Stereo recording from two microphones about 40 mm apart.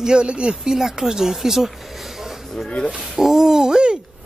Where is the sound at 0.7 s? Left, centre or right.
Centre.